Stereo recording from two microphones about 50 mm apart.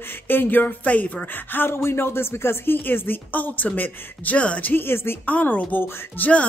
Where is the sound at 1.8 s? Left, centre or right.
Left.